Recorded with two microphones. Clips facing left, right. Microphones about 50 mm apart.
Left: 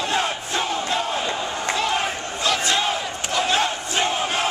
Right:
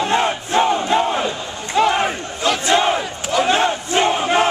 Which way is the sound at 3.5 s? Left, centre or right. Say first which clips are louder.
Right 5 dB; right.